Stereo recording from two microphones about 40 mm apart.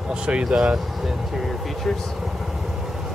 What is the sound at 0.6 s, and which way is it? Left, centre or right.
Speech, centre.